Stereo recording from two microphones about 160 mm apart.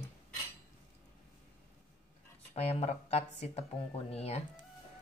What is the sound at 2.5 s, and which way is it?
Speech, 40° left (ahead or behind).